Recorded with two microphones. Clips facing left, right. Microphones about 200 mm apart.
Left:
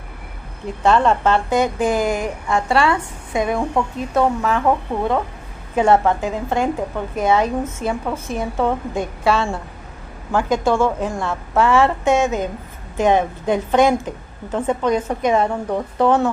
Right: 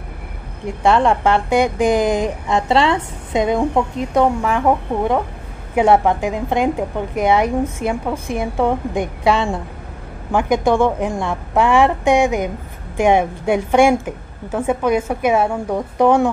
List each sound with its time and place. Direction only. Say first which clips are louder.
0.7 s a woman's voice: right 1 dB; 15° right (ahead or behind)